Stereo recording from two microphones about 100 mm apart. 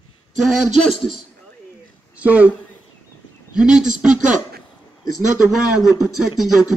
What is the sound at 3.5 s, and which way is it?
Speech, 10° right (ahead or behind).